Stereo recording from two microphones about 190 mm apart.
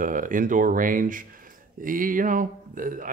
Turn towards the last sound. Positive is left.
turn(degrees=-45)  # may be behind; listen again after turning